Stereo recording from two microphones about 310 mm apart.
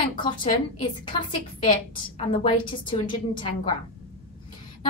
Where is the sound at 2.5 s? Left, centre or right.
Centre.